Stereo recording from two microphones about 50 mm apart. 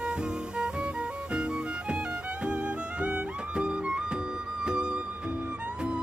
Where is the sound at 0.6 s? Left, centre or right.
Centre.